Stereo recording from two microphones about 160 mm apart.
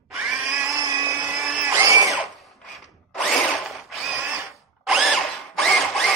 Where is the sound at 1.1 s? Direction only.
10° right (ahead or behind).